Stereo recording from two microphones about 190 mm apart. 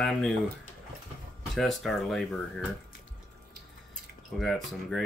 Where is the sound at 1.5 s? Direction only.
Centre (ahead or behind).